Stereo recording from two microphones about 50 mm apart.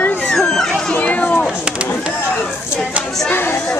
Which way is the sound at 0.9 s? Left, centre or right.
Left.